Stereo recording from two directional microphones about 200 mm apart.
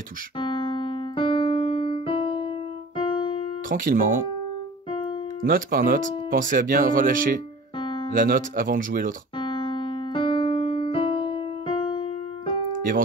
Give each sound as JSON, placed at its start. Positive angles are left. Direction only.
{"t": 0.4, "sound": "keyboard", "side_deg": 25}
{"t": 3.6, "sound": "speech", "side_deg": -45}
{"t": 5.4, "sound": "speech", "side_deg": -45}
{"t": 7.8, "sound": "music", "side_deg": 25}
{"t": 8.1, "sound": "speech", "side_deg": -40}
{"t": 9.4, "sound": "keyboard", "side_deg": 25}